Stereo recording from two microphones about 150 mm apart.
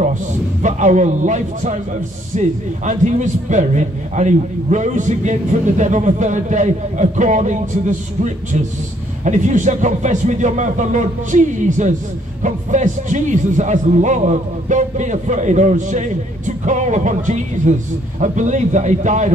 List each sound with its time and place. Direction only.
0.0 s a man's voice: 55° right (ahead or behind)